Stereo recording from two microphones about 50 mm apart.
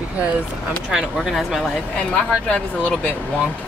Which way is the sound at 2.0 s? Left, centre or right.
Left.